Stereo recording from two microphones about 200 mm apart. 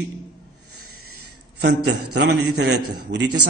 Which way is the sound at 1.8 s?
75° right (ahead or behind).